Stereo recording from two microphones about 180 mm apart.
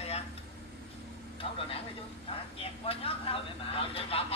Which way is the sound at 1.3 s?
30° left (ahead or behind).